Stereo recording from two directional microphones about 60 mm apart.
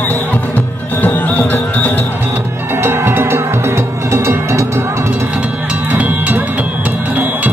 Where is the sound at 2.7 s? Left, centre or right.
Right.